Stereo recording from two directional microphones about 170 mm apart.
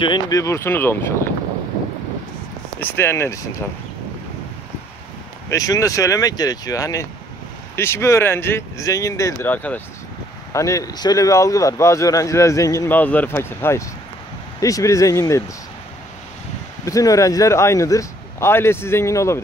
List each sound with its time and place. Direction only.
0.0 s speech: 25° left (ahead or behind)
2.8 s speech: 15° left (ahead or behind)
5.5 s speech: 20° left (ahead or behind)
16.8 s speech: 20° left (ahead or behind)